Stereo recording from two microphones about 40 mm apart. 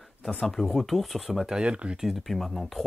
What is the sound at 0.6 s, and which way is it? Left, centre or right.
Speech, centre.